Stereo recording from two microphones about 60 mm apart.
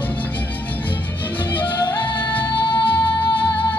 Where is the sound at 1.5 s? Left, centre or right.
Left.